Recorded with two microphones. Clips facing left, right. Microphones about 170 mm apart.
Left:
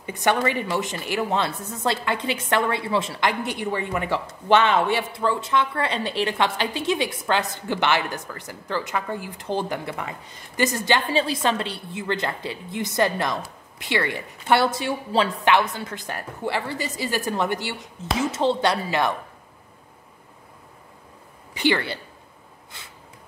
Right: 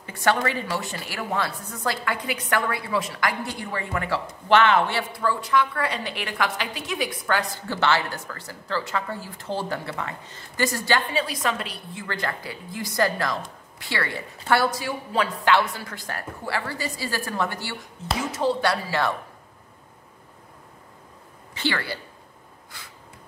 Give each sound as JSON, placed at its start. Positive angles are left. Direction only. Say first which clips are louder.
{"t": 0.0, "sound": "a woman's voice", "louder": "left 1 dB", "side_deg": 20}
{"t": 21.5, "sound": "a woman's voice", "louder": "left 5 dB", "side_deg": 20}
{"t": 22.7, "sound": "snort", "louder": "even", "side_deg": 25}